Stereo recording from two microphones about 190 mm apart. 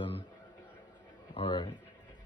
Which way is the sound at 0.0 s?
25° left (ahead or behind).